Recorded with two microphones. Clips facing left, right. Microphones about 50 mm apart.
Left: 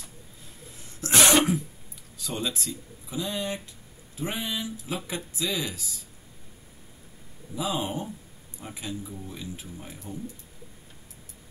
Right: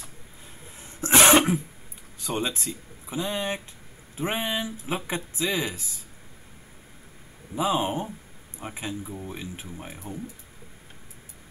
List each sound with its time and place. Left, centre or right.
0.7 s cough: right
2.1 s speech: right
7.5 s speech: right